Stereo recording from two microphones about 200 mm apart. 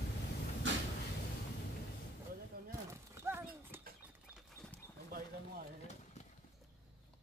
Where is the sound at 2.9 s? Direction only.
15° right (ahead or behind).